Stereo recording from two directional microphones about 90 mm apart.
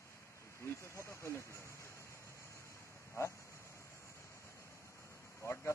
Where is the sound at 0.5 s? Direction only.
30° left (ahead or behind).